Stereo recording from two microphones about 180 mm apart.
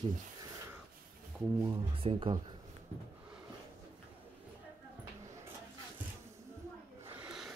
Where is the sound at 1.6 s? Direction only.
20° right (ahead or behind).